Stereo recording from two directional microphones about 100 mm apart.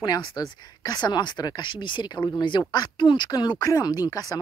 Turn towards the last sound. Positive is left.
turn(degrees=40)  # may be behind; listen again after turning